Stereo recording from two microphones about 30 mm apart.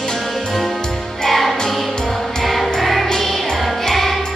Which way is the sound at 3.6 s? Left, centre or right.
Centre.